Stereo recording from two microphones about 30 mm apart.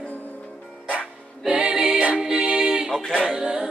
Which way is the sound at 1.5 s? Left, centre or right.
Right.